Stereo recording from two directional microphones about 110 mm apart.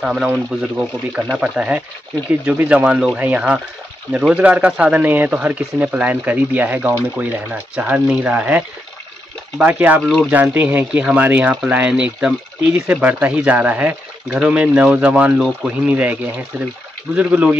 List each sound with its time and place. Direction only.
0.0 s speech: 10° right (ahead or behind)
10.0 s speech: centre (ahead or behind)
10.3 s speech: 20° right (ahead or behind)